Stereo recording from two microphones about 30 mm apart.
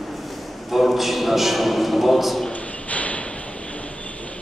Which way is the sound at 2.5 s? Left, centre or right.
Left.